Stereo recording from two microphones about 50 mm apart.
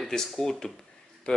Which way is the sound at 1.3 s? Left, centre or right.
Left.